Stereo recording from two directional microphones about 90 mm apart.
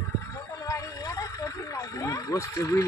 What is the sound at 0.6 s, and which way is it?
Speech, 40° left (ahead or behind).